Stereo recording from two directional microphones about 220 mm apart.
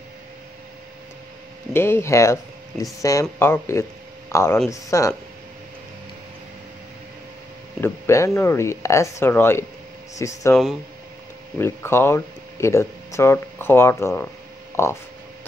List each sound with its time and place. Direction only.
1.7 s speech: 10° left (ahead or behind)
7.8 s speech: 10° left (ahead or behind)
10.5 s speech: centre (ahead or behind)